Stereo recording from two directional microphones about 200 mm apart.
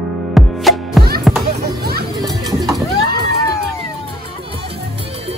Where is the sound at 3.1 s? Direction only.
50° right (ahead or behind).